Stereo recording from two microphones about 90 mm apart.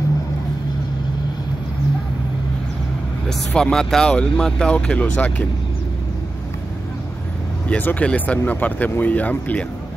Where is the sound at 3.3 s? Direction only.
5° left (ahead or behind).